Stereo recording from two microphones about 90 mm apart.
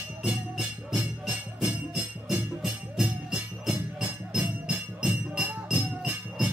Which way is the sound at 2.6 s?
5° right (ahead or behind).